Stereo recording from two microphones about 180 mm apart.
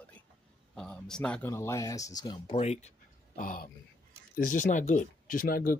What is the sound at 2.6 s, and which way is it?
Speech, 40° left (ahead or behind).